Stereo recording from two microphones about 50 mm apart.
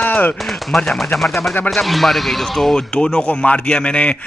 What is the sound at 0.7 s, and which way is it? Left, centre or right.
A man's voice, centre.